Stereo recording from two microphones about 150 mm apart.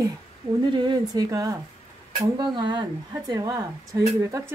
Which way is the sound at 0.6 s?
30° right (ahead or behind).